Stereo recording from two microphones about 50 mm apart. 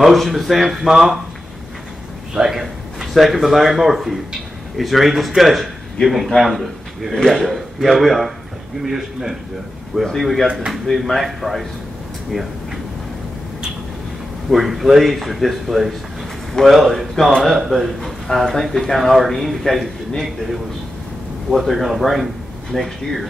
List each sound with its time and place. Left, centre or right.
0.0 s speech: centre
2.3 s a man's voice: centre
10.0 s speech: centre
10.5 s a man's voice: centre
10.9 s speech: centre
14.5 s speech: centre
21.5 s speech: centre